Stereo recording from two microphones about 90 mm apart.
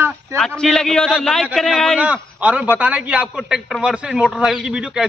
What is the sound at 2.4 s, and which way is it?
A man's voice, 15° right (ahead or behind).